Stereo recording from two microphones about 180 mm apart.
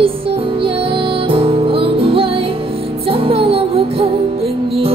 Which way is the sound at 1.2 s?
30° right (ahead or behind).